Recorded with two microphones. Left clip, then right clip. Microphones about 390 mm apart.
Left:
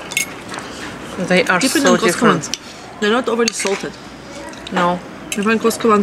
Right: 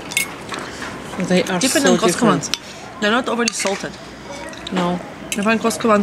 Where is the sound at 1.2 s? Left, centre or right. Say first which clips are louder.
Left 4 dB; centre.